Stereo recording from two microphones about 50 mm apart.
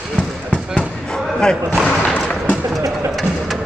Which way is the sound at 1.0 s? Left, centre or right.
Centre.